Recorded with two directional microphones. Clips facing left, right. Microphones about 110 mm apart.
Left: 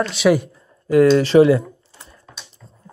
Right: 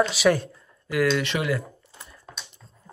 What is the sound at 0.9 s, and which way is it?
Speech, 35° left (ahead or behind).